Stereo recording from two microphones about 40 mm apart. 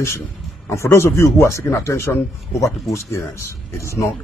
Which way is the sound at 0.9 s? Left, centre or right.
Left.